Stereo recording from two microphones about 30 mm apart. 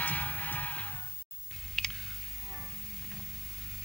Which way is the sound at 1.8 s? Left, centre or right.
Centre.